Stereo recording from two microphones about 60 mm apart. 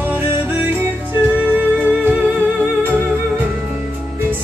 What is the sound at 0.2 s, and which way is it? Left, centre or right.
Music, right.